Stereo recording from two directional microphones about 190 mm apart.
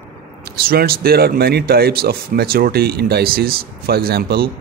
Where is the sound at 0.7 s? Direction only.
55° right (ahead or behind).